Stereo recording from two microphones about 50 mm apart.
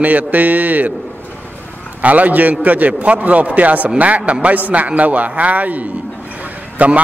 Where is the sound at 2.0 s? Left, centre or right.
Right.